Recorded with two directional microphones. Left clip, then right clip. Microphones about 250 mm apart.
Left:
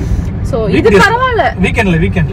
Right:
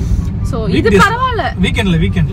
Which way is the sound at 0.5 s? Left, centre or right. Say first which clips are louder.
Left 4 dB; centre.